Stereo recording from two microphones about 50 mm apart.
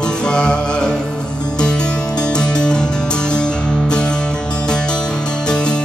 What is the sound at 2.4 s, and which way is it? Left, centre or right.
Music, centre.